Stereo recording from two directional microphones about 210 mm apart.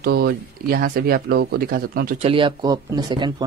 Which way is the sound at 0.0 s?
50° right (ahead or behind).